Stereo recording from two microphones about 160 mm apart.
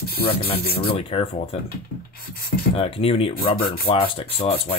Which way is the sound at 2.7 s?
35° left (ahead or behind).